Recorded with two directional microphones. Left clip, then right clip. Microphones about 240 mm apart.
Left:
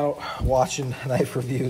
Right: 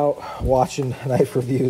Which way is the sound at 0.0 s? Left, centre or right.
Right.